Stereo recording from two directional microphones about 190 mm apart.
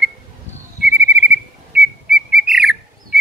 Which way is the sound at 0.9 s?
70° right (ahead or behind).